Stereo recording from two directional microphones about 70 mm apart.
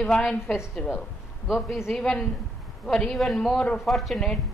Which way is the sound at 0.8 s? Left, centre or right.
Centre.